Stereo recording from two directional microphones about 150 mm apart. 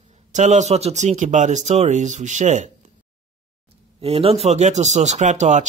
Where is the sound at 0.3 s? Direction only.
50° right (ahead or behind).